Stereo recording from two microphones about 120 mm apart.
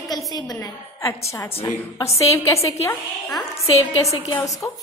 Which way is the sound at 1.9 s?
25° left (ahead or behind).